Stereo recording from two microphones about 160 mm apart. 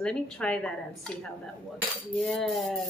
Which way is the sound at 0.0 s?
5° left (ahead or behind).